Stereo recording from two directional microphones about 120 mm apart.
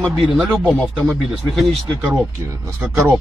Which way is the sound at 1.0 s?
Centre (ahead or behind).